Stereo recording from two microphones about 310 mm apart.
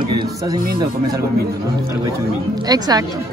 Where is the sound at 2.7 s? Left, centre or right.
Centre.